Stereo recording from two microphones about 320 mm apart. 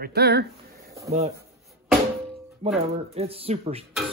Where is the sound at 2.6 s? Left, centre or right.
Centre.